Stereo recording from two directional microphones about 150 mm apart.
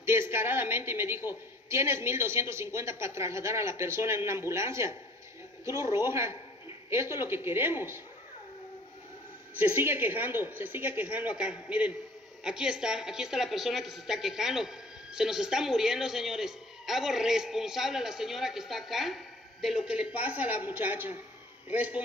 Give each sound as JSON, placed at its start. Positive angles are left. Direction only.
{"t": 0.0, "sound": "a woman's voice", "side_deg": -15}
{"t": 9.6, "sound": "a woman's voice", "side_deg": -15}